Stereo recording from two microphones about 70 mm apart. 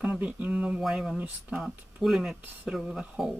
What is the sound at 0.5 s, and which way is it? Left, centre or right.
Speech, centre.